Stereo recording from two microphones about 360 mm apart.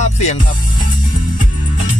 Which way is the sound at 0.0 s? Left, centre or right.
Centre.